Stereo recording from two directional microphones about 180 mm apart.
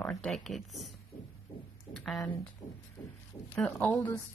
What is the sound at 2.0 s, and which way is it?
Speech, centre (ahead or behind).